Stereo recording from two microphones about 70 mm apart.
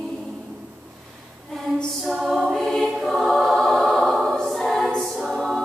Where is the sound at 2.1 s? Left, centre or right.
Centre.